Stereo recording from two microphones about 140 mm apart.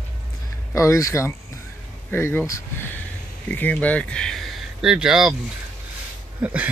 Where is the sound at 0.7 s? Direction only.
20° left (ahead or behind); by 5.3 s 5° right (ahead or behind).